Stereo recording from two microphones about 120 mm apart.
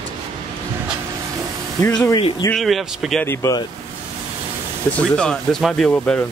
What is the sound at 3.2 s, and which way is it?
Speech, 20° left (ahead or behind).